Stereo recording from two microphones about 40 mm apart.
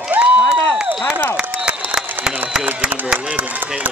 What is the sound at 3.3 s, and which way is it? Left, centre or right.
Run, right.